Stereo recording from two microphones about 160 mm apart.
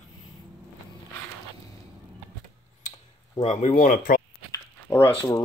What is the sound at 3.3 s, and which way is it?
Speech, 45° left (ahead or behind).